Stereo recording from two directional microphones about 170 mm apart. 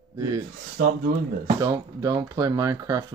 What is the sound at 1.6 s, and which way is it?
Speech, 20° right (ahead or behind).